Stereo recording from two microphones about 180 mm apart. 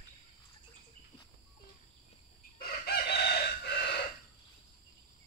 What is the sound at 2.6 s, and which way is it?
Chicken, 60° left (ahead or behind).